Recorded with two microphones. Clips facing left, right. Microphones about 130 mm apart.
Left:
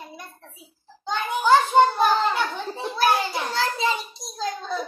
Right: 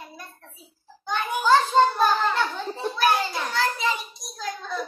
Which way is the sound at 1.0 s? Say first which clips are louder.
Left 1 dB; 20° left (ahead or behind).